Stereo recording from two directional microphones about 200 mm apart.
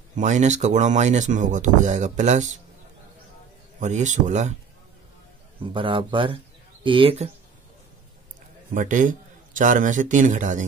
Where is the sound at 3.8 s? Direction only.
35° right (ahead or behind).